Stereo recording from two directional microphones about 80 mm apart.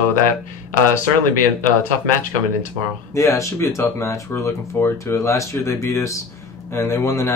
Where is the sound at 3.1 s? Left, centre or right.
Left.